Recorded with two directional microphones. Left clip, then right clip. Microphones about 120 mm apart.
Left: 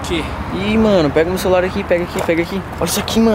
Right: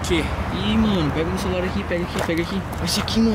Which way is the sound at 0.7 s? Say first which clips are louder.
Left 10 dB; 30° left (ahead or behind).